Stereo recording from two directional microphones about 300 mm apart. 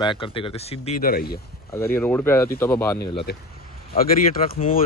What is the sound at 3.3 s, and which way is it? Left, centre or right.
Speech, left.